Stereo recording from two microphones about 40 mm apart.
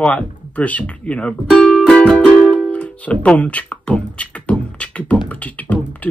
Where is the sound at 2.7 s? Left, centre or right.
Left.